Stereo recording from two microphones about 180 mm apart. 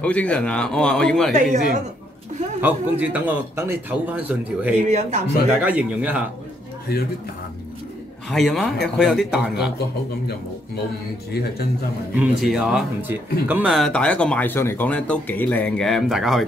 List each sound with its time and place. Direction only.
0.0 s speech: 5° left (ahead or behind)
1.3 s speech: 45° right (ahead or behind)
2.6 s a man's voice: 10° right (ahead or behind)
4.8 s a man's voice: 40° right (ahead or behind)
5.5 s a man's voice: 10° right (ahead or behind)
8.3 s speech: centre (ahead or behind)
11.3 s speech: 60° left (ahead or behind)
12.2 s speech: 5° right (ahead or behind)